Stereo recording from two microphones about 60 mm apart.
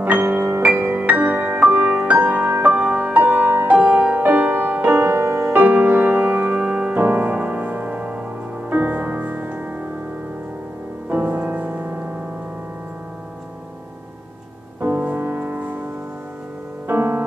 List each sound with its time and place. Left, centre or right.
0.0 s music: right
1.0 s music: right
3.7 s music: right
5.2 s music: right
11.1 s music: right
14.8 s music: right
16.8 s music: right